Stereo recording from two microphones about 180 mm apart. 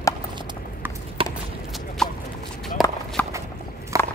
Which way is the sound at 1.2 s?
30° right (ahead or behind).